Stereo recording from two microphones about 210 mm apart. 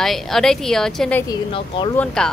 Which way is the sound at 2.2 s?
5° left (ahead or behind).